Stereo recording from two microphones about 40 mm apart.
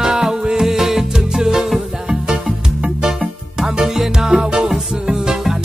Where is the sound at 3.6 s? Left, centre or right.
Centre.